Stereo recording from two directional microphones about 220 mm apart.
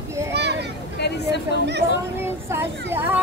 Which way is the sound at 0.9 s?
50° left (ahead or behind).